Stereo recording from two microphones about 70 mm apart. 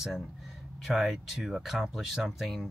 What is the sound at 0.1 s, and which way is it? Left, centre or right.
Speech, centre.